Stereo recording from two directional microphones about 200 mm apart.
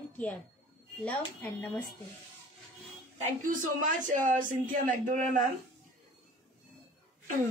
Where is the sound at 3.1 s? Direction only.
35° right (ahead or behind).